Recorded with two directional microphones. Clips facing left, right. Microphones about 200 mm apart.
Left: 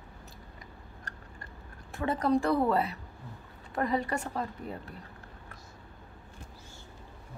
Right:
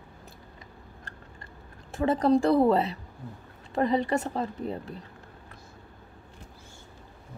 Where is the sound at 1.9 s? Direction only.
25° right (ahead or behind).